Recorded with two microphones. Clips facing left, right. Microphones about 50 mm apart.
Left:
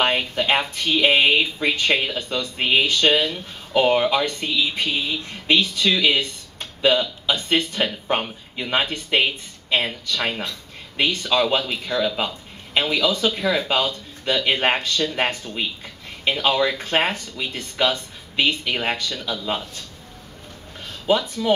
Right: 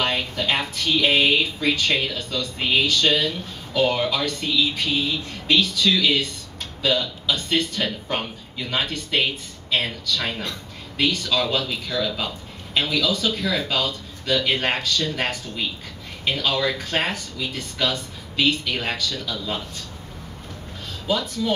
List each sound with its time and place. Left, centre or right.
0.0 s speech: left
11.0 s speech: left
21.1 s speech: left